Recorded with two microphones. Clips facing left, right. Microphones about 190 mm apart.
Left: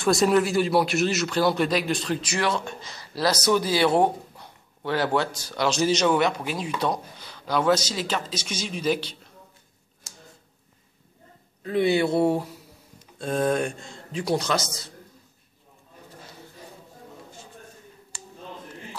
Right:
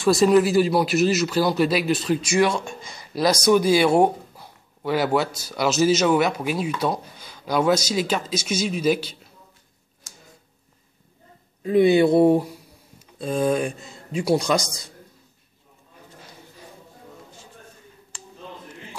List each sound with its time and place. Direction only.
0.0 s a man's voice: centre (ahead or behind)
11.6 s a man's voice: 15° right (ahead or behind)
13.2 s a man's voice: centre (ahead or behind)